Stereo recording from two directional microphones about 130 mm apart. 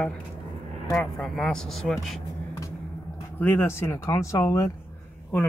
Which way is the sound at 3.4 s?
15° left (ahead or behind).